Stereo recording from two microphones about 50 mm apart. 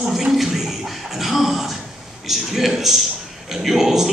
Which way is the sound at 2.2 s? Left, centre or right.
Centre.